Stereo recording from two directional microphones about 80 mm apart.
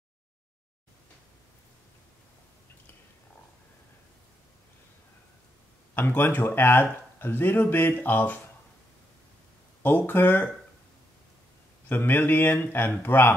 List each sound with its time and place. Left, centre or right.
5.9 s speech: left
9.8 s speech: left
11.9 s speech: left